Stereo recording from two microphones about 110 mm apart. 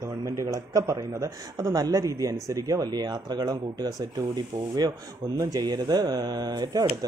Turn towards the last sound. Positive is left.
turn(degrees=-35)  # may be behind; listen again after turning